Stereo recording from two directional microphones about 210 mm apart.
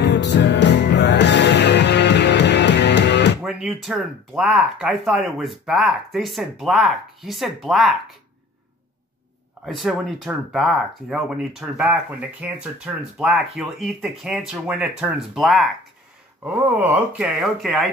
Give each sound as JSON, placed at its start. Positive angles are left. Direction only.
{"t": 0.0, "sound": "music", "side_deg": 55}
{"t": 3.4, "sound": "speech", "side_deg": -5}
{"t": 9.7, "sound": "speech", "side_deg": 0}